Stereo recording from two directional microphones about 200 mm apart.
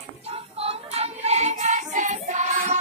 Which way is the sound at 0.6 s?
30° right (ahead or behind).